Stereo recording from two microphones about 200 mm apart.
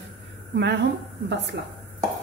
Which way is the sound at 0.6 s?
60° right (ahead or behind).